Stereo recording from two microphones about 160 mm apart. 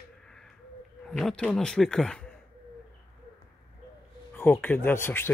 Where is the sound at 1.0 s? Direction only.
5° left (ahead or behind).